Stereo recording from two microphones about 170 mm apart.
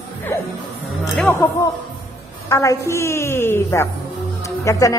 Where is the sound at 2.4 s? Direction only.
20° left (ahead or behind).